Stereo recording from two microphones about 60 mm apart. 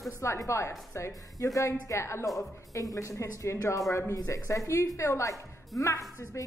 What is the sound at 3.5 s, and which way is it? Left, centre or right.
A woman's voice, left.